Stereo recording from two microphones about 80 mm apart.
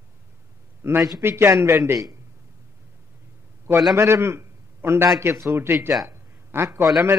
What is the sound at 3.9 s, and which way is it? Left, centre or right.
A man's voice, right.